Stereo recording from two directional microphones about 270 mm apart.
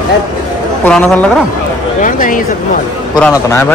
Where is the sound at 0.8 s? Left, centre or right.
Centre.